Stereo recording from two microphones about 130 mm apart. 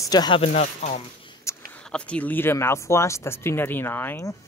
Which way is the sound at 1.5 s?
20° left (ahead or behind).